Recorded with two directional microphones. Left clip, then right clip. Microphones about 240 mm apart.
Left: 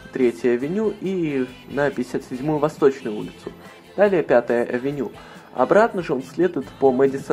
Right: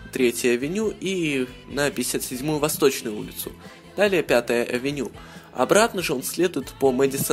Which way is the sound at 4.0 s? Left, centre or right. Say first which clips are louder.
Left 3 dB; right.